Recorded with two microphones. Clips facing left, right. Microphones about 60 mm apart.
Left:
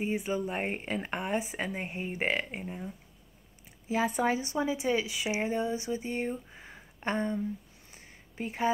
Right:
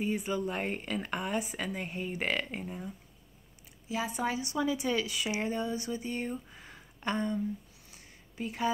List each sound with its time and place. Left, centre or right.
0.0 s speech: left
3.9 s speech: left
7.9 s a sound: left